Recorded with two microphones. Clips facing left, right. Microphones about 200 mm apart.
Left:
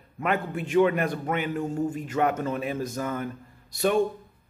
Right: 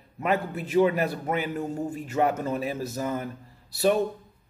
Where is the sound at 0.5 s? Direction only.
35° right (ahead or behind).